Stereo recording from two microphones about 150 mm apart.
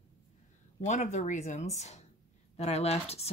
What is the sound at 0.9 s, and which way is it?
Speech, 50° left (ahead or behind).